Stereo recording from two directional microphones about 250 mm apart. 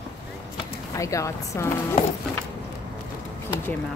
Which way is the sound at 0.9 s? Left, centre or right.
Centre.